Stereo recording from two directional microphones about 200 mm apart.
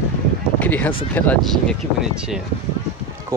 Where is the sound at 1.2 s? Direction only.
5° left (ahead or behind).